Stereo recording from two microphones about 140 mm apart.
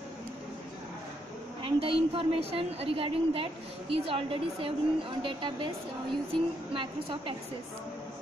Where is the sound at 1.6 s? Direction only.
40° right (ahead or behind).